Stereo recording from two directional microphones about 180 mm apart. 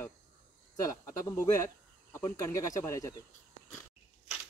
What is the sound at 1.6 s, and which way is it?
Speech, 15° left (ahead or behind).